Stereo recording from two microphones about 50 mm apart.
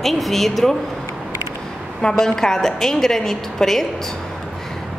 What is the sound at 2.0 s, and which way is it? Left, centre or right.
A woman's voice, centre.